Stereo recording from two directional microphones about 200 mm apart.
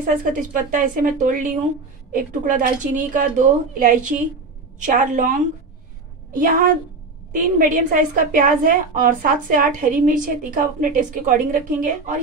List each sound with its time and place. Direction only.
0.0 s a woman's voice: 45° right (ahead or behind)